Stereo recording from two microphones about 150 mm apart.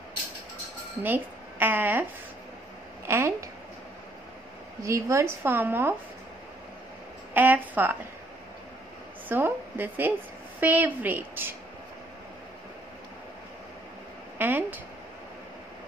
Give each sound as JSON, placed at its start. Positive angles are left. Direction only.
{"t": 1.0, "sound": "a woman's voice", "side_deg": -10}
{"t": 3.1, "sound": "a woman's voice", "side_deg": -15}
{"t": 4.8, "sound": "a woman's voice", "side_deg": -20}
{"t": 7.3, "sound": "a woman's voice", "side_deg": -10}
{"t": 9.3, "sound": "a woman's voice", "side_deg": -10}
{"t": 14.4, "sound": "speech", "side_deg": -15}